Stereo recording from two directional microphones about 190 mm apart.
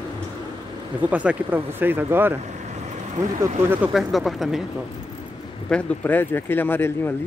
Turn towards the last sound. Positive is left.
turn(degrees=10)  # may be behind; listen again after turning